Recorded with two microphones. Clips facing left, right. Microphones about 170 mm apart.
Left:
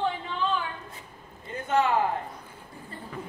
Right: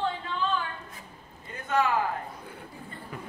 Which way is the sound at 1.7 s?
25° left (ahead or behind).